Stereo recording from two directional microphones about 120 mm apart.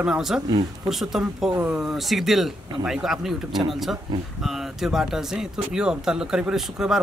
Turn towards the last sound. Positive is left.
turn(degrees=-5)  # may be behind; listen again after turning